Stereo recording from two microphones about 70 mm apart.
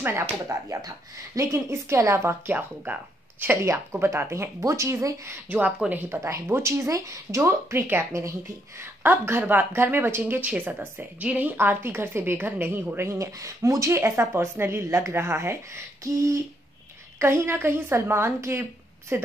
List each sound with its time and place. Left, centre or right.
0.0 s speech: right
0.5 s a woman's voice: right
3.6 s a woman's voice: right
8.1 s a woman's voice: right
11.5 s a woman's voice: right
17.2 s a woman's voice: right